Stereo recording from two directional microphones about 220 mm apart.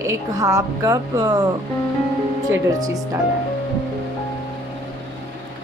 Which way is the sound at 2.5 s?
15° right (ahead or behind).